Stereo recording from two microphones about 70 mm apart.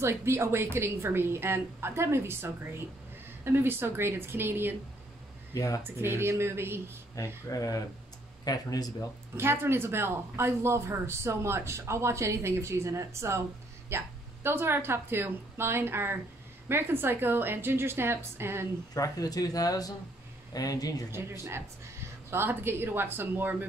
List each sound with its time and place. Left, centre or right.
0.0 s speech: right
5.5 s speech: left
5.9 s speech: right
7.2 s speech: left
9.4 s a woman's voice: right
18.9 s speech: left
21.1 s speech: right